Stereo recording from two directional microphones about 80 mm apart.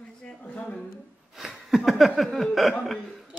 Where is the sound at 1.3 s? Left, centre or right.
Centre.